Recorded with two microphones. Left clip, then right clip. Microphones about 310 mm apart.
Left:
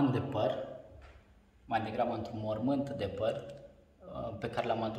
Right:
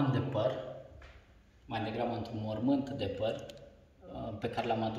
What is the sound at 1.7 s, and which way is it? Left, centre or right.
A man's voice, centre.